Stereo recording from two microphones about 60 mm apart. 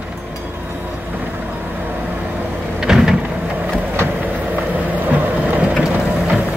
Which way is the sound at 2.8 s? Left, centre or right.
Centre.